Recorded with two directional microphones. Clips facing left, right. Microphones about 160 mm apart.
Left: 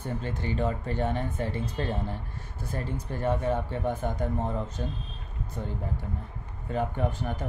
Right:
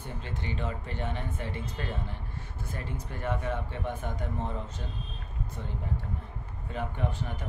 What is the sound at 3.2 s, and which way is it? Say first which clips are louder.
Speech: left 5 dB; 35° left (ahead or behind).